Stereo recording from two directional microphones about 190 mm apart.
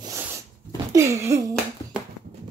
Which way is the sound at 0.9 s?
15° right (ahead or behind).